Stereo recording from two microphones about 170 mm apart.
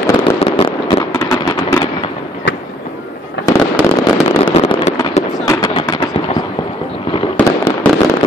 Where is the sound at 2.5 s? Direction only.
90° left.